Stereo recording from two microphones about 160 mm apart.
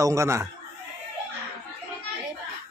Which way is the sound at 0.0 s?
20° right (ahead or behind).